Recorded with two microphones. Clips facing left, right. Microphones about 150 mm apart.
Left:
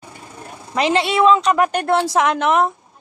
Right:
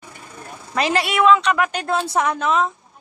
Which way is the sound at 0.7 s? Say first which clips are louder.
Left 3 dB; 20° left (ahead or behind).